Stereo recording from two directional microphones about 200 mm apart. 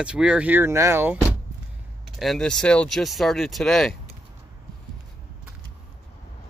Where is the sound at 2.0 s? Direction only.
Centre (ahead or behind).